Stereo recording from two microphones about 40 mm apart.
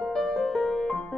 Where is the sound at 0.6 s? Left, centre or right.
Centre.